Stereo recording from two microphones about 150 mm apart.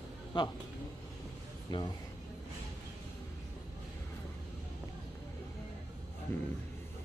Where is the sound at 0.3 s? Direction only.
30° left (ahead or behind).